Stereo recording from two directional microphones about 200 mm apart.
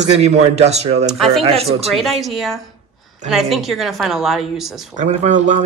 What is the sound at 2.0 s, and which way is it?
A woman's voice, centre (ahead or behind).